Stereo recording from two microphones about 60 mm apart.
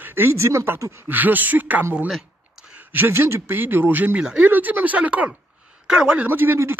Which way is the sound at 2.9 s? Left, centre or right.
Right.